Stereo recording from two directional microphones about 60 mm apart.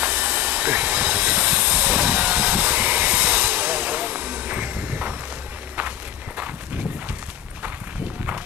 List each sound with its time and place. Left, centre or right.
0.0 s steam: right
5.8 s walk: right